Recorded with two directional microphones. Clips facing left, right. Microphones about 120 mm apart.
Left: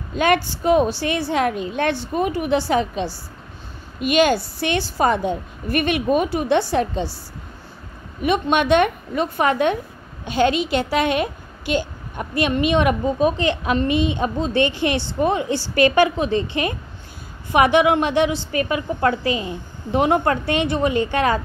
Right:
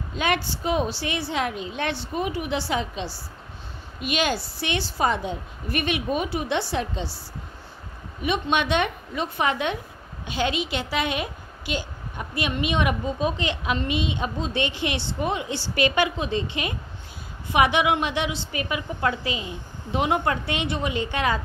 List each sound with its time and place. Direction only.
0.1 s a child's voice: 50° left (ahead or behind)
8.2 s a child's voice: 50° left (ahead or behind)
17.5 s a child's voice: 50° left (ahead or behind)